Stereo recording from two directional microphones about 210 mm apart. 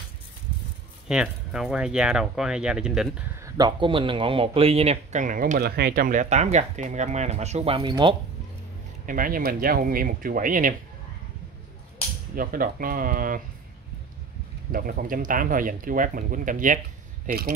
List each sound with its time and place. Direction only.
1.0 s speech: 5° right (ahead or behind)
3.4 s speech: 20° right (ahead or behind)
9.0 s speech: 40° right (ahead or behind)
12.4 s speech: 40° right (ahead or behind)
14.7 s speech: 40° right (ahead or behind)